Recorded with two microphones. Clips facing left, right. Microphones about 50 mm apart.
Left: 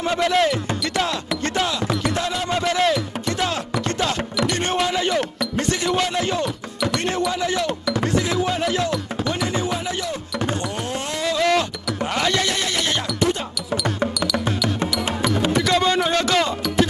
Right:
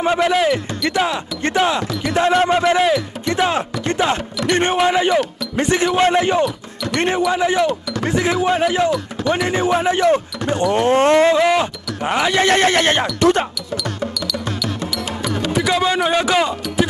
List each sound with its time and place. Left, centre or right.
0.0 s speech: centre; by 11.3 s right
11.3 s speech: right
12.4 s speech: right
15.5 s speech: centre